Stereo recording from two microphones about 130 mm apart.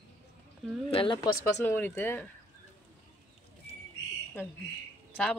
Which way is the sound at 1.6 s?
15° left (ahead or behind).